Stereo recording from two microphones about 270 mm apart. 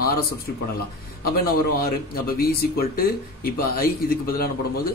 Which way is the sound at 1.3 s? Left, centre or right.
Left.